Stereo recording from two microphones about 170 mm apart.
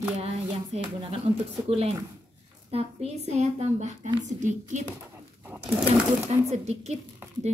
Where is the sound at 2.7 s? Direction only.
40° right (ahead or behind).